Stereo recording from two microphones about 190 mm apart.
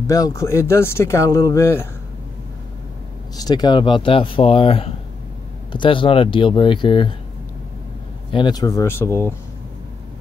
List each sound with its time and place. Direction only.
0.0 s speech: 15° left (ahead or behind)
3.3 s speech: 20° left (ahead or behind)
8.3 s speech: 25° left (ahead or behind)